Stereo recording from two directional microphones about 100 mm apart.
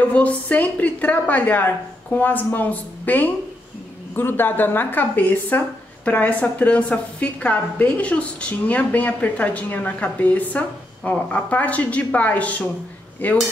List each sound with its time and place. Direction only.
0.1 s a woman's voice: 15° left (ahead or behind)